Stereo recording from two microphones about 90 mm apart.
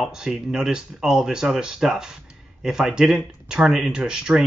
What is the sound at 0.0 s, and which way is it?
Speech, 5° right (ahead or behind).